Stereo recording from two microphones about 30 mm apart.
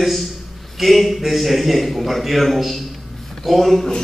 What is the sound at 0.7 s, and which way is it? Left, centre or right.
A man's voice, centre.